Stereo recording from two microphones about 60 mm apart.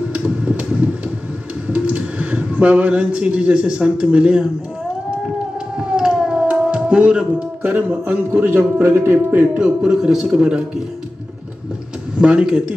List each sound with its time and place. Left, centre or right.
0.1 s a sound: centre
1.7 s speech: right
5.8 s music: centre
7.6 s speech: right
8.3 s speech: right
9.4 s a man's voice: centre
12.2 s a man's voice: centre